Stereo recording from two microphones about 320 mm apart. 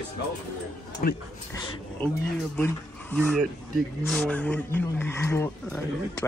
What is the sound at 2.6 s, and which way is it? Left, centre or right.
Speech, centre.